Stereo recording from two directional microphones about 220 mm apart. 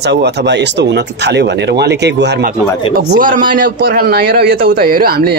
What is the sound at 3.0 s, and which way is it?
Speech, 40° right (ahead or behind).